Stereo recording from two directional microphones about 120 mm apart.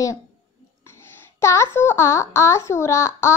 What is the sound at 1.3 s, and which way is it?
A child's voice, 20° left (ahead or behind).